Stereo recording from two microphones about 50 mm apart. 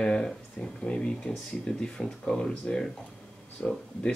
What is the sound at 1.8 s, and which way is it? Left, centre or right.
Speech, centre.